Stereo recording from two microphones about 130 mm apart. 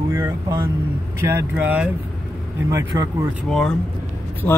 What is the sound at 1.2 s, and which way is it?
Speech, 15° right (ahead or behind).